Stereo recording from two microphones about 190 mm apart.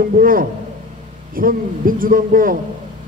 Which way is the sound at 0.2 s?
45° right (ahead or behind).